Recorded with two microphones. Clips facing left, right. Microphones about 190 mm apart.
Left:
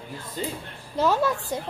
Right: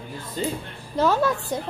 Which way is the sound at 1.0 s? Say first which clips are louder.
Right 2 dB; 5° left (ahead or behind).